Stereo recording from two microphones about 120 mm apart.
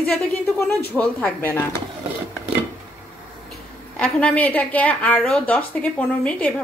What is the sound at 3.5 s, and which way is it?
A woman's voice, 10° left (ahead or behind).